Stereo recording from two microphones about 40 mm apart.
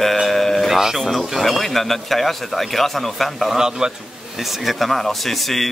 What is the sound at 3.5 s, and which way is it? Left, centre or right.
Speech, centre.